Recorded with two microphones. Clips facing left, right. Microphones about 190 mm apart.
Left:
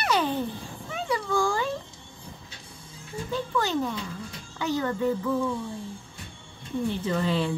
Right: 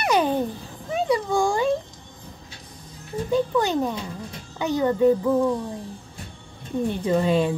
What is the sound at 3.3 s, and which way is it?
Speech, 15° right (ahead or behind).